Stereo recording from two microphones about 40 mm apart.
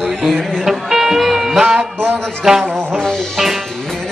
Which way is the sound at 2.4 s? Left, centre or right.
Centre.